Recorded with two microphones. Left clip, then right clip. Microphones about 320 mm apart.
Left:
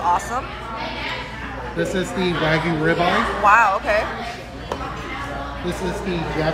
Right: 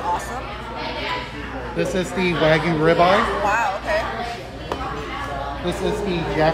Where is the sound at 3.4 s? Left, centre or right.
Centre.